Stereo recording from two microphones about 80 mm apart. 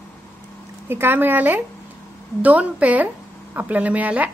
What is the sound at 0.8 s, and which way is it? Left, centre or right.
A woman's voice, right.